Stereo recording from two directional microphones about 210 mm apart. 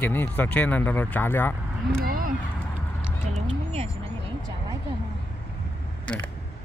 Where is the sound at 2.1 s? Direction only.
40° right (ahead or behind).